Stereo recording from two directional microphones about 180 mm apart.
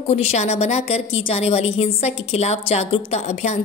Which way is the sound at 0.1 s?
40° left (ahead or behind).